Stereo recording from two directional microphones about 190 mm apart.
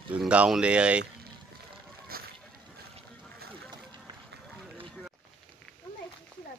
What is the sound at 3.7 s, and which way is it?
Run, 25° right (ahead or behind).